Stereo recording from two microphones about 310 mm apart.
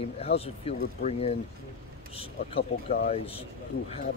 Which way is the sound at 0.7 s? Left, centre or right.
Centre.